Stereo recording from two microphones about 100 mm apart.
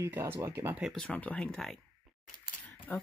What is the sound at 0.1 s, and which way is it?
Speech, 25° right (ahead or behind).